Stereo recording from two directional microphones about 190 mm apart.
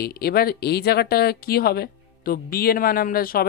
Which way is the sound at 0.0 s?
55° left (ahead or behind).